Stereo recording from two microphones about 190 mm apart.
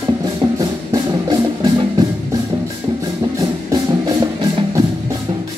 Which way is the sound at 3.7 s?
20° right (ahead or behind).